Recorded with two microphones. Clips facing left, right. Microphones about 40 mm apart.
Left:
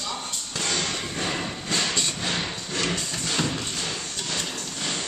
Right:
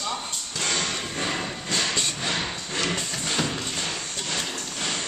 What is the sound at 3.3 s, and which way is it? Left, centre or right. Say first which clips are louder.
Music: even; centre.